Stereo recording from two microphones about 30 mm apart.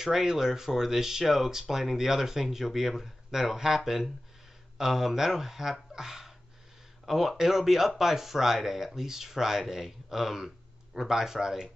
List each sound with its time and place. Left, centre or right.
0.0 s speech: centre